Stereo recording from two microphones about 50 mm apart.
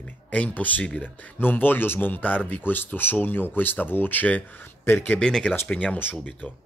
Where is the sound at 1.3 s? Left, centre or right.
Left.